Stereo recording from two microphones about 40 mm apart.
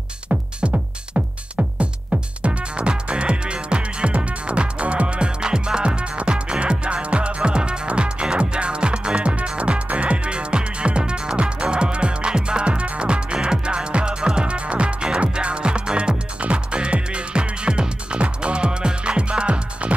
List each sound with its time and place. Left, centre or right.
0.3 s music: right